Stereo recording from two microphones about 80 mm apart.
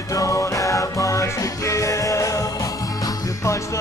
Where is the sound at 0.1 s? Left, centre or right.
Left.